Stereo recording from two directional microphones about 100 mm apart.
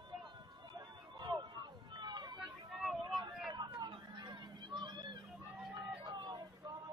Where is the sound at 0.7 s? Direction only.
45° right (ahead or behind).